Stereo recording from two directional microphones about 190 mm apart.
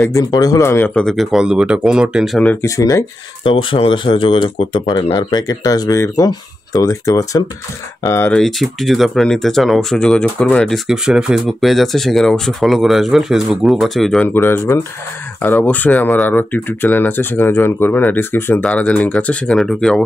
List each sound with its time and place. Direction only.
0.1 s speech: 20° left (ahead or behind); by 2.5 s centre (ahead or behind)
2.6 s speech: 15° left (ahead or behind)
3.4 s speech: 30° left (ahead or behind)
8.4 s speech: centre (ahead or behind)